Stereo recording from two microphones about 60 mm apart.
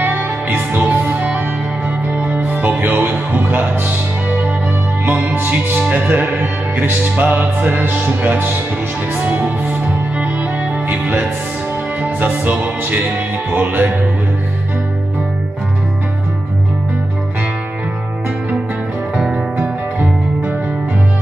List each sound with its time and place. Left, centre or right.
0.0 s music: right
5.0 s music: right
19.1 s music: centre